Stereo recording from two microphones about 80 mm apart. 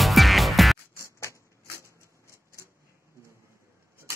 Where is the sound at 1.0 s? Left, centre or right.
Left.